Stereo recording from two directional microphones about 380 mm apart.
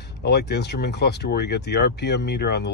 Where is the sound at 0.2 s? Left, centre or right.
Left.